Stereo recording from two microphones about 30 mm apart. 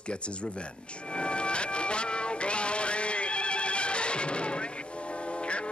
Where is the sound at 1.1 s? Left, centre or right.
Left.